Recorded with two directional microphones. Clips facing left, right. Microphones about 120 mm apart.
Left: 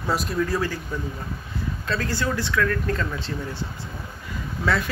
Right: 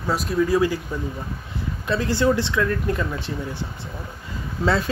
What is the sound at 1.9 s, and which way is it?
Speech, 20° right (ahead or behind).